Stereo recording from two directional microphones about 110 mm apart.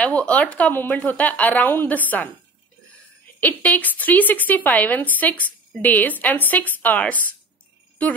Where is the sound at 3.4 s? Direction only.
15° left (ahead or behind).